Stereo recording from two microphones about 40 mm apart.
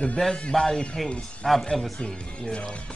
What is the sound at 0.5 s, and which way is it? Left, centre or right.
Speech, centre.